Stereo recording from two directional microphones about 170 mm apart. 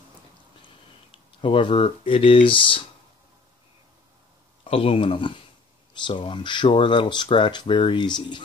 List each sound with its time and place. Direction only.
1.4 s speech: 30° left (ahead or behind)
4.6 s speech: 35° left (ahead or behind)